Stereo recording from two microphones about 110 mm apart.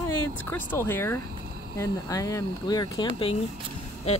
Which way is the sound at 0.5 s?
20° left (ahead or behind).